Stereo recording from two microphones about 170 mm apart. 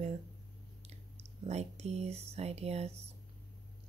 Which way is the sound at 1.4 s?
40° right (ahead or behind).